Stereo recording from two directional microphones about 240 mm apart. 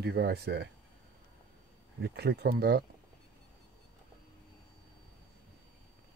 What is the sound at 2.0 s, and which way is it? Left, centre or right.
Speech, right.